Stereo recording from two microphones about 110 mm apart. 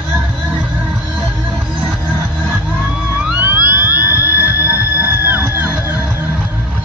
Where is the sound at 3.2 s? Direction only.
15° right (ahead or behind).